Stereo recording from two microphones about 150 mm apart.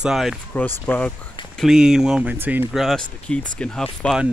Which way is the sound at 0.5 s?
10° left (ahead or behind).